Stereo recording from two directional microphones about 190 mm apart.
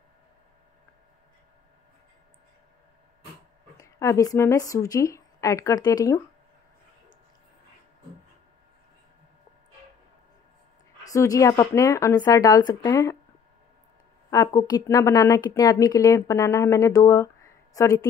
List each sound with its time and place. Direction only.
3.7 s speech: 15° left (ahead or behind)
11.1 s a woman's voice: 15° left (ahead or behind)
14.3 s a woman's voice: 15° left (ahead or behind)